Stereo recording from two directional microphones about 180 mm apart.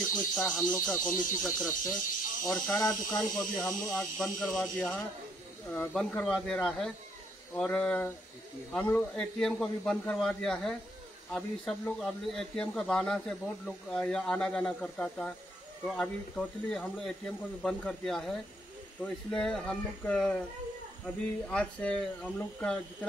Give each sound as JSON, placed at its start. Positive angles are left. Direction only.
{"t": 0.3, "sound": "speech", "side_deg": 0}
{"t": 2.8, "sound": "speech", "side_deg": 20}
{"t": 3.3, "sound": "speech", "side_deg": 5}
{"t": 21.5, "sound": "speech", "side_deg": 5}